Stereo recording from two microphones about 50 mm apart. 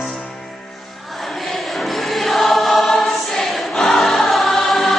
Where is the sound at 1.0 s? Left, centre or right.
Centre.